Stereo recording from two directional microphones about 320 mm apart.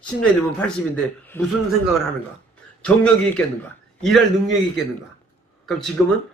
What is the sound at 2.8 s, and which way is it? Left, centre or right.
Speech, centre.